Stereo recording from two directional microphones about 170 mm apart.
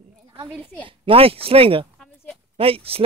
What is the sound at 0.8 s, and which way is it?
Speech, 35° right (ahead or behind).